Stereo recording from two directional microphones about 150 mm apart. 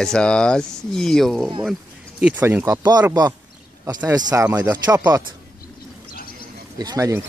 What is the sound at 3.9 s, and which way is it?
Speech, 25° right (ahead or behind).